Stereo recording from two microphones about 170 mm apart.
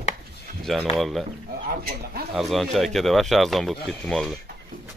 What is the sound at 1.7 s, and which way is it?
Speech, 65° right (ahead or behind).